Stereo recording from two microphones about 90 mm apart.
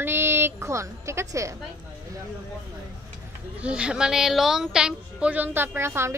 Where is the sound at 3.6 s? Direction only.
10° right (ahead or behind); by 6.1 s 30° right (ahead or behind).